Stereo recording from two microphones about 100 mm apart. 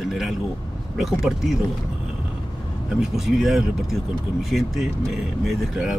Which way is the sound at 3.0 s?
5° right (ahead or behind).